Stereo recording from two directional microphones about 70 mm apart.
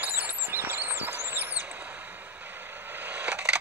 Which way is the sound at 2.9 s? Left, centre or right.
Right.